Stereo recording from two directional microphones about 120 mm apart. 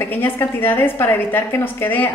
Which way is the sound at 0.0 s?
20° left (ahead or behind).